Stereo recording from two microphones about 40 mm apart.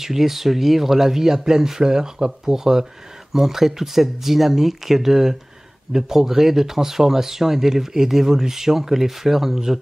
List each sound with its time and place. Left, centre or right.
0.0 s speech: centre